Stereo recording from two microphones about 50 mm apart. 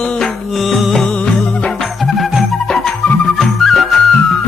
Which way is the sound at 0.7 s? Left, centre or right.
Centre.